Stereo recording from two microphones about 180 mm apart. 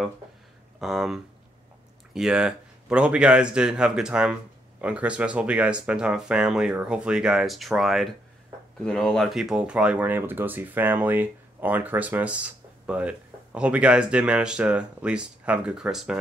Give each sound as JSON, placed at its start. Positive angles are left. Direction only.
{"t": 0.7, "sound": "speech", "side_deg": 0}